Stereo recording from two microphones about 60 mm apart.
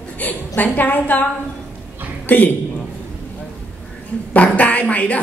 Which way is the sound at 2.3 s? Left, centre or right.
Left.